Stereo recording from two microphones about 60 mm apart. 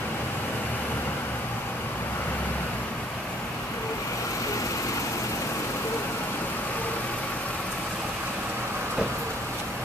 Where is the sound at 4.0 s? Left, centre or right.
Left.